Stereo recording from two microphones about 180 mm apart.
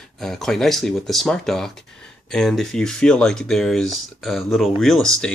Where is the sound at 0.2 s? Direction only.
Centre (ahead or behind).